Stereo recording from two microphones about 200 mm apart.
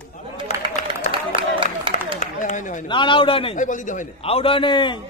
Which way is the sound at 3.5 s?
40° left (ahead or behind).